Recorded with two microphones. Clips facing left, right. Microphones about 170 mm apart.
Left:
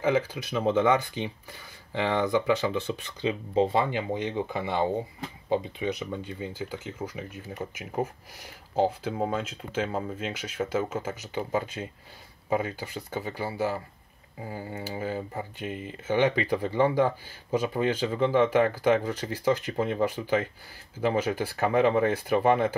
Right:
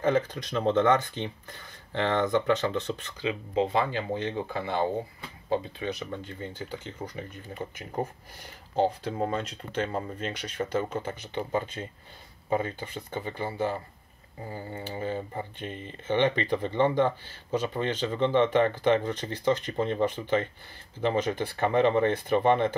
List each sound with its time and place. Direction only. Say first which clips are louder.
0.0 s speech: even; 5° left (ahead or behind)
3.2 s speech: left 3 dB; 25° left (ahead or behind); by 22.8 s 5° left (ahead or behind)